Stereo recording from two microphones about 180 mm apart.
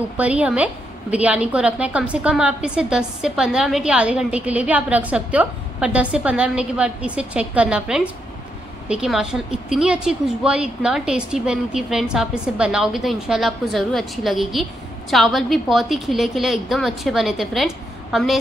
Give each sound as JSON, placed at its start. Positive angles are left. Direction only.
{"t": 0.2, "sound": "a woman's voice", "side_deg": -10}